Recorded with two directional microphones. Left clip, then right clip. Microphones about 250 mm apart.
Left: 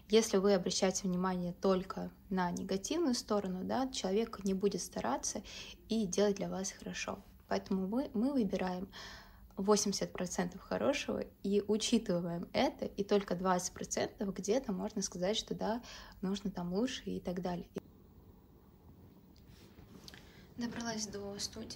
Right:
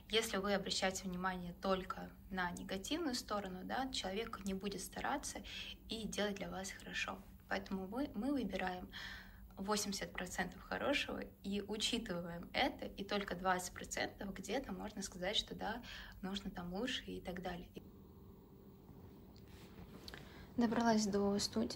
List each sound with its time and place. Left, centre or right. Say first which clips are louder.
0.1 s speech: left 8 dB; left
20.1 s a woman's voice: right 1 dB; centre